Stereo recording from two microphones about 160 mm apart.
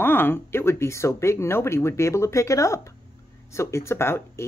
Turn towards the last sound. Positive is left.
turn(degrees=15)  # may be behind; listen again after turning